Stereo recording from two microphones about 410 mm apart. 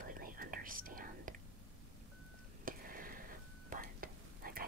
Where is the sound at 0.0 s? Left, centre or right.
Right.